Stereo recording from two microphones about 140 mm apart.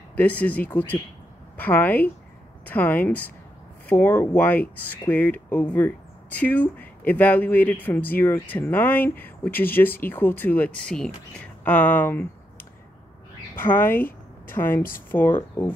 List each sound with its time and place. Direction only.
0.1 s speech: 10° left (ahead or behind)
13.6 s a woman's voice: 15° left (ahead or behind)